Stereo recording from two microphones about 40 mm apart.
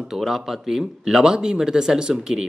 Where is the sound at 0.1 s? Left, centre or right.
Centre.